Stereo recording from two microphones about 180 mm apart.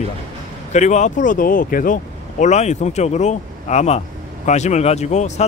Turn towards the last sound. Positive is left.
turn(degrees=40)  # may be behind; listen again after turning